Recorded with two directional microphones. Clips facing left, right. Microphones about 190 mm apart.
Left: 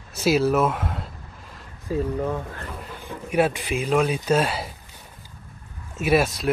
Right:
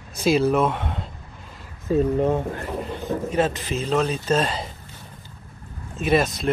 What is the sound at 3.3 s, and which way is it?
Speech, 10° left (ahead or behind).